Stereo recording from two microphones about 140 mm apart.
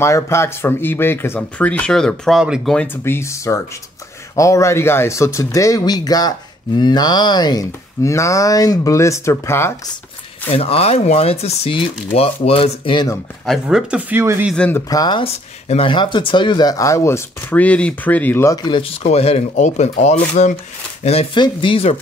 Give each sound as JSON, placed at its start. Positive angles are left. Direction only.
{"t": 0.0, "sound": "speech", "side_deg": 20}
{"t": 10.5, "sound": "speech", "side_deg": 45}
{"t": 13.5, "sound": "speech", "side_deg": -5}
{"t": 14.5, "sound": "speech", "side_deg": 10}
{"t": 14.9, "sound": "speech", "side_deg": 30}
{"t": 15.2, "sound": "speech", "side_deg": 45}
{"t": 18.8, "sound": "speech", "side_deg": 45}